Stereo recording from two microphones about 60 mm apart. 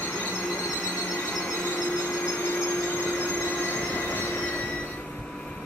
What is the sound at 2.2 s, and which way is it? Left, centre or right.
Train, left.